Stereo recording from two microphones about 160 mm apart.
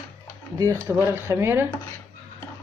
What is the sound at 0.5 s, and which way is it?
Speech, 20° right (ahead or behind).